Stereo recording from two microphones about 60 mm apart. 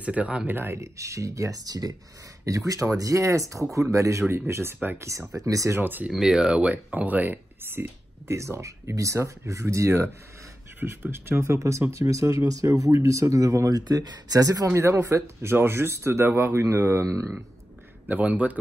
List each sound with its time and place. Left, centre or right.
0.0 s speech: right
0.5 s speech: right
0.7 s speech: right
2.4 s speech: right
4.9 s speech: right
5.4 s speech: right
5.7 s speech: right
6.1 s speech: centre; by 8.4 s right
8.4 s speech: right
14.7 s speech: right
15.5 s speech: right
16.5 s speech: right
18.0 s speech: right